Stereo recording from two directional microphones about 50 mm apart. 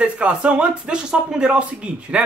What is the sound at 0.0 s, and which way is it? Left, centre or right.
A man's voice, right.